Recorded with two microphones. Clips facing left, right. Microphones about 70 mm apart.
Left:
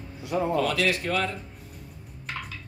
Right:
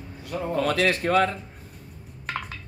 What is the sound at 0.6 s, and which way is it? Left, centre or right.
Speech, right.